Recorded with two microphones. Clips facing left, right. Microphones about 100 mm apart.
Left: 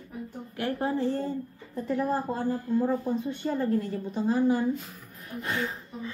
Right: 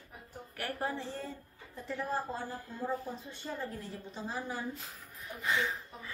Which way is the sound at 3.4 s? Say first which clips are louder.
Left 11 dB; 50° left (ahead or behind).